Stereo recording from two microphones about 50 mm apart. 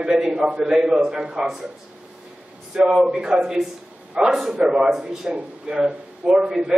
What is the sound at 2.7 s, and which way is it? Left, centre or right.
A man's voice, centre.